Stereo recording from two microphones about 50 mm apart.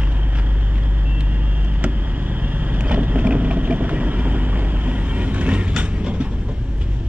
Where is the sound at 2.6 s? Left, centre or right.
Right.